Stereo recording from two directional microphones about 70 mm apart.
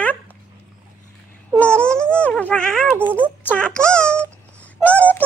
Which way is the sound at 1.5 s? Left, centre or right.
Centre.